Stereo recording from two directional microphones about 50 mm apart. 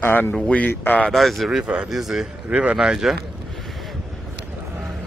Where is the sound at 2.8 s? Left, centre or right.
Centre.